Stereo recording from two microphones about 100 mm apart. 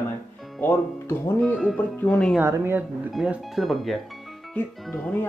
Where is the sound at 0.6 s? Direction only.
25° left (ahead or behind).